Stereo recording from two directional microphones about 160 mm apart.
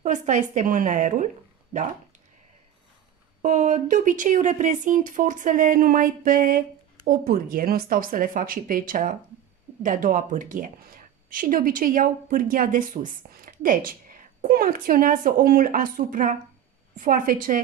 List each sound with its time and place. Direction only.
0.0 s a woman's voice: 50° right (ahead or behind)
3.4 s a woman's voice: 50° right (ahead or behind)